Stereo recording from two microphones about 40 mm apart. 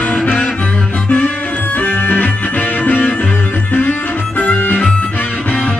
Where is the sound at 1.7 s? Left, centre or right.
Left.